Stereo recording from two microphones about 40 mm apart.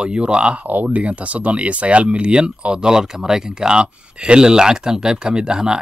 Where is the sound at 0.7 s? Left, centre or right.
Right.